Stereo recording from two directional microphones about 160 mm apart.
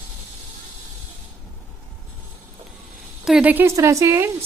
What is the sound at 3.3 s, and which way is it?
A woman's voice, 10° right (ahead or behind).